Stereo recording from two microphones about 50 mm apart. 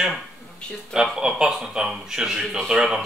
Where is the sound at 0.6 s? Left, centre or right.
Centre.